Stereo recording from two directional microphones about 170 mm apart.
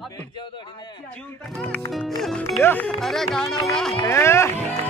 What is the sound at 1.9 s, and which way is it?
Music, centre (ahead or behind).